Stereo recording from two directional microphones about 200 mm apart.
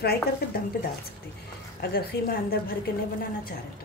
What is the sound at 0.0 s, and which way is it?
Speech, 50° left (ahead or behind).